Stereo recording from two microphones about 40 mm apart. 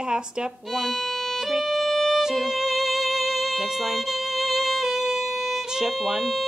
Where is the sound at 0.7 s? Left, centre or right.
Centre.